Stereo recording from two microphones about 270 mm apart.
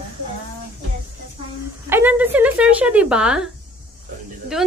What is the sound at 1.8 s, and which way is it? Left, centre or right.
Speech, centre.